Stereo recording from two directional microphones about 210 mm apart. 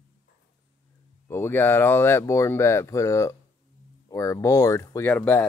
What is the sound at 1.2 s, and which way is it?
Speech, 10° left (ahead or behind).